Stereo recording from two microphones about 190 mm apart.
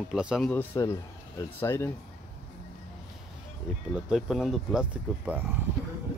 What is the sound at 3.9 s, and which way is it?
Speech, centre (ahead or behind).